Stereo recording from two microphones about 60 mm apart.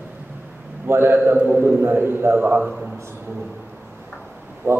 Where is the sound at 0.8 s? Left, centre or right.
Right.